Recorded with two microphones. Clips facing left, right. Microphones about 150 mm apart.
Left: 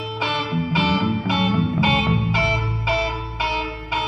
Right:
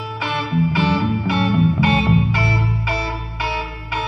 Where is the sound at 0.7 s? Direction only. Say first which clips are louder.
Right 2 dB; 20° left (ahead or behind).